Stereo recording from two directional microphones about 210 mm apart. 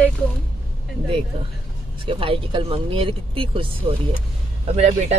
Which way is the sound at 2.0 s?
25° right (ahead or behind).